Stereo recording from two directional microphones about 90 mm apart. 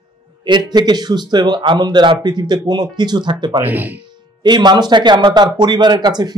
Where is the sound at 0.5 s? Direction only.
50° right (ahead or behind).